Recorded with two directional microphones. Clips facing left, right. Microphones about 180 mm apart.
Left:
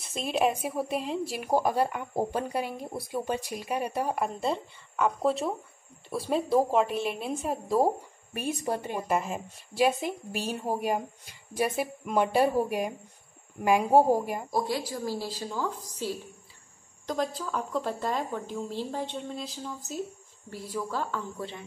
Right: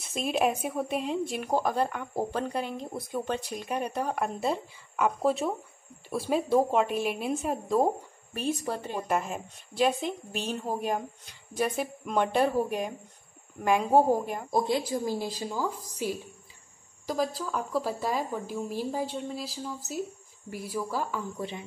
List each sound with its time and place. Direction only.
0.0 s a woman's voice: 5° right (ahead or behind); by 9.0 s 15° left (ahead or behind)
9.0 s a woman's voice: centre (ahead or behind)
14.5 s a woman's voice: 20° right (ahead or behind)